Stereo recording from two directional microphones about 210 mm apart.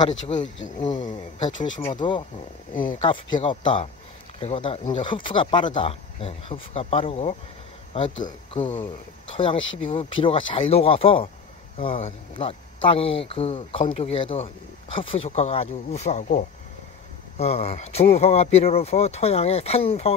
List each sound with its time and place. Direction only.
1.4 s speech: 20° left (ahead or behind)
2.7 s speech: 40° left (ahead or behind)
3.4 s speech: 25° left (ahead or behind)
9.6 s speech: 65° left (ahead or behind)
10.2 s speech: 25° left (ahead or behind)